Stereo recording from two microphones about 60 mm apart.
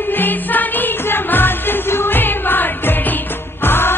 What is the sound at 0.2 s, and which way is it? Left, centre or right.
Music, left.